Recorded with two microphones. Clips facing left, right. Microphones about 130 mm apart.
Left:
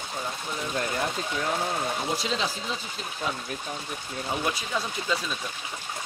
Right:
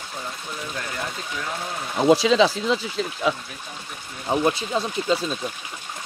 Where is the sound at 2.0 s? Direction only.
90° right.